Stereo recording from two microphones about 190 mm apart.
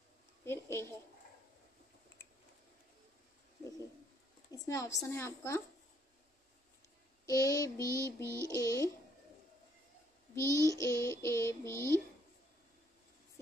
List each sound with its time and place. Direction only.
0.5 s child singing: 15° left (ahead or behind)
4.5 s a sound: 20° left (ahead or behind)
5.0 s child singing: 15° left (ahead or behind)
7.2 s child singing: 20° left (ahead or behind)
7.9 s a sound: 15° right (ahead or behind)
8.5 s child singing: 15° left (ahead or behind)
10.3 s child singing: 15° left (ahead or behind)